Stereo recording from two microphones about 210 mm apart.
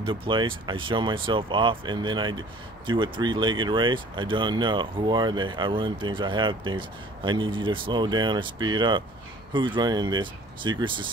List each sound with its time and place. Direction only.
0.0 s speech: 25° right (ahead or behind)